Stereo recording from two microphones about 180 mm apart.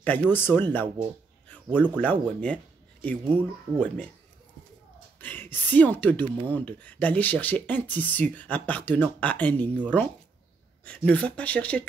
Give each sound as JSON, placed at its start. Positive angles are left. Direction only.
{"t": 0.0, "sound": "speech", "side_deg": 10}
{"t": 5.2, "sound": "speech", "side_deg": 10}